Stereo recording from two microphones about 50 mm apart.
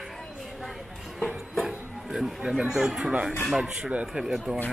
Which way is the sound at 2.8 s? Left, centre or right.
Centre.